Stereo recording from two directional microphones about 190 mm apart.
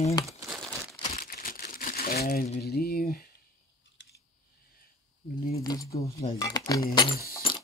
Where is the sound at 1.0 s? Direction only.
50° left (ahead or behind).